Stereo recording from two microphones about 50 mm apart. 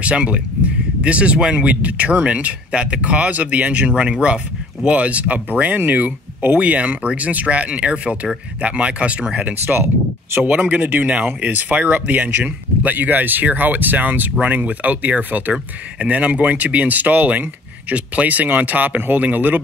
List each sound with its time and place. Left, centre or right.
0.0 s speech: right
9.4 s speech: right